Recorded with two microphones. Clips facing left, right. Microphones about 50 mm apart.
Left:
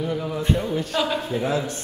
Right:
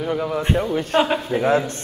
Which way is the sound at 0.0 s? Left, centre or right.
Right.